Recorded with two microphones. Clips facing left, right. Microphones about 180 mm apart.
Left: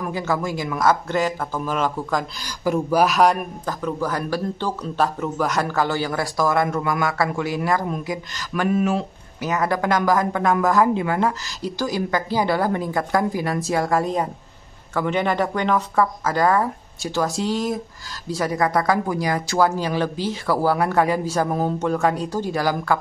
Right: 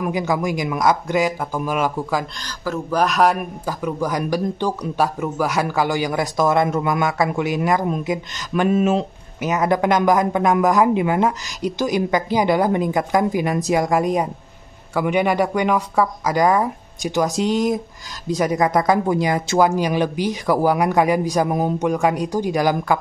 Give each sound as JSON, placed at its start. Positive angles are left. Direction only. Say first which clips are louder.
{"t": 0.0, "sound": "speech", "louder": "right 3 dB", "side_deg": -15}
{"t": 2.4, "sound": "speech", "louder": "left 4 dB", "side_deg": 15}